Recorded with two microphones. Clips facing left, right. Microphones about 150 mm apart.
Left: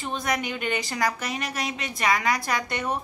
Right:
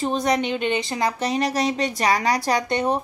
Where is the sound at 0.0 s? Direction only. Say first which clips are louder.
Right 7 dB; 35° right (ahead or behind).